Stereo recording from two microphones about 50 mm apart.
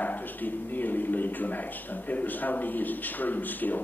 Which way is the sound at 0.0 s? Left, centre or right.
Left.